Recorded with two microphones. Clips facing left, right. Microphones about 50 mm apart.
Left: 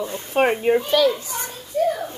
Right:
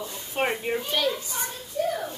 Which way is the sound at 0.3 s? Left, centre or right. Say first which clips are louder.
Left 8 dB; left.